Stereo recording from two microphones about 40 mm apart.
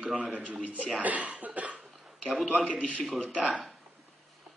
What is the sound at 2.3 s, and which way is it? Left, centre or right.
Speech, centre.